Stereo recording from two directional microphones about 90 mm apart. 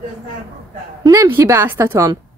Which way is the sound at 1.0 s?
35° right (ahead or behind).